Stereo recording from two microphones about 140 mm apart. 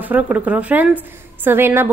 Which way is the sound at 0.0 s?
10° right (ahead or behind).